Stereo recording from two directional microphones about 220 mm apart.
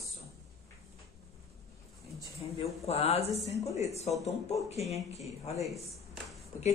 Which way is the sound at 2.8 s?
30° left (ahead or behind).